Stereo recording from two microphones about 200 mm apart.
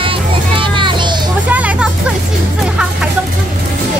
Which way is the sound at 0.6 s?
25° right (ahead or behind).